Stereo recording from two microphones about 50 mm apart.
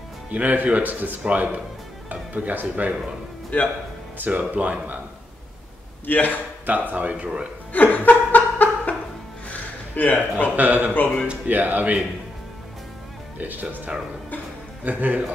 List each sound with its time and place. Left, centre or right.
0.3 s speech: right
4.4 s speech: right
6.0 s speech: left
6.6 s speech: right
7.7 s laughter: left
9.5 s music: left
10.5 s speech: right
10.9 s speech: left
11.4 s speech: right
13.4 s speech: right